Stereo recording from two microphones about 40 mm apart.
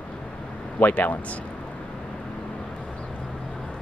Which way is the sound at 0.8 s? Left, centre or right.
Left.